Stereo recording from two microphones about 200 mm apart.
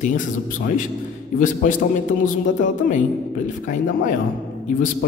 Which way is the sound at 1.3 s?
40° left (ahead or behind).